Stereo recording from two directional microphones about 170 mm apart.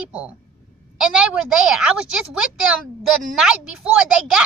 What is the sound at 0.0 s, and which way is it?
A woman's voice, 5° right (ahead or behind).